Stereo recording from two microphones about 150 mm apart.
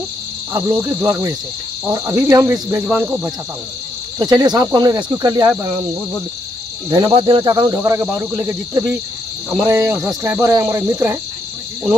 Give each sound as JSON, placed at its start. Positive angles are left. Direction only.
{"t": 0.5, "sound": "cricket", "side_deg": -20}
{"t": 4.2, "sound": "cricket", "side_deg": -30}
{"t": 6.9, "sound": "cricket", "side_deg": -35}
{"t": 7.7, "sound": "cricket", "side_deg": -20}